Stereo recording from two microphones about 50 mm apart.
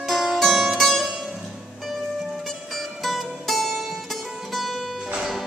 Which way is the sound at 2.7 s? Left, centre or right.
Centre.